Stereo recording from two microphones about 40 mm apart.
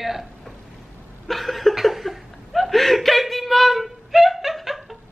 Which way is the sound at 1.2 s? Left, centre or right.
Centre.